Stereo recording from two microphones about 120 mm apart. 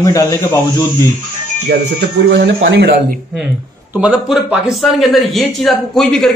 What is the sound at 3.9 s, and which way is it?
Speech, 15° right (ahead or behind).